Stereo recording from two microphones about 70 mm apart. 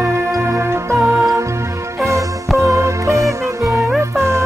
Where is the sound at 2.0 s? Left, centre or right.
Right.